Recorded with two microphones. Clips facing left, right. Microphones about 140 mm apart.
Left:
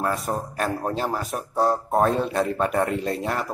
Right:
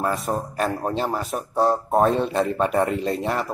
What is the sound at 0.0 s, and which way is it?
Speech, centre (ahead or behind).